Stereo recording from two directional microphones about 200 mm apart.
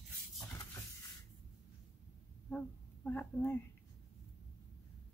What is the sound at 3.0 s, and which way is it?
Speech, 10° left (ahead or behind).